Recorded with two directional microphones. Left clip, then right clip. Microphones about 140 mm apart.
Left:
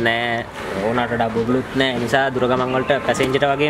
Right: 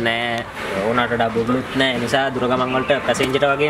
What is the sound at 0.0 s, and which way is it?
Speech, 15° left (ahead or behind).